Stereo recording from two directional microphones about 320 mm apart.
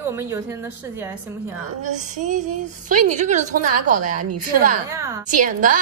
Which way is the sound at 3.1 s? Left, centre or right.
Right.